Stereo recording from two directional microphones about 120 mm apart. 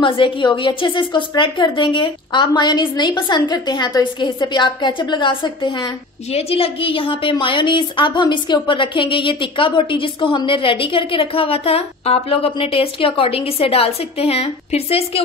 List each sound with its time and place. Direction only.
0.0 s a woman's voice: 40° left (ahead or behind)